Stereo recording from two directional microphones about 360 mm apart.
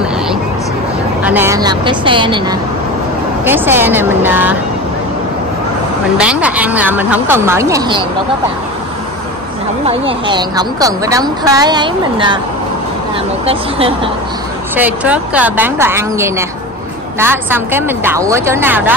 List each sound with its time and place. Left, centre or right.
1.2 s a woman's voice: centre
6.1 s speech: centre
9.8 s a woman's voice: centre
13.5 s a woman's voice: centre
14.8 s speech: centre